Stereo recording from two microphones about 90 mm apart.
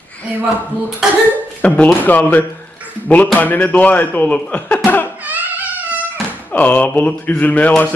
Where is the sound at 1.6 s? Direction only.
15° left (ahead or behind).